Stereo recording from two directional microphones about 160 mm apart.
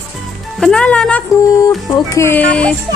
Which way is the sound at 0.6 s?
5° left (ahead or behind).